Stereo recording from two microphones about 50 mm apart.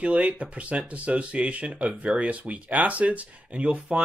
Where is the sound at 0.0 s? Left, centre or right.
Right.